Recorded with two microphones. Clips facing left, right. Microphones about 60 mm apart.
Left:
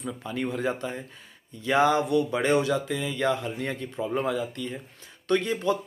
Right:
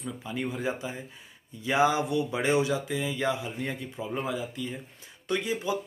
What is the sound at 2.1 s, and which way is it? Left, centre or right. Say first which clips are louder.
Speech: left 3 dB; centre.